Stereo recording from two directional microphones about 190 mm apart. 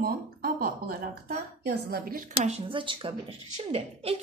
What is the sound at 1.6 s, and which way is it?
Speech, 55° right (ahead or behind).